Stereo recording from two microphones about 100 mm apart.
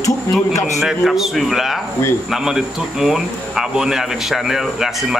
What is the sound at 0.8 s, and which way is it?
Speech, centre (ahead or behind).